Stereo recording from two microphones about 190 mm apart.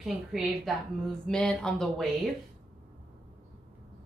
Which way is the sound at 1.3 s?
5° left (ahead or behind).